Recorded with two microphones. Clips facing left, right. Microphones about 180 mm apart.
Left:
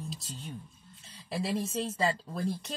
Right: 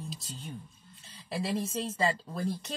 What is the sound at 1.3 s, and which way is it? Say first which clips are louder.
Speech: even; centre (ahead or behind).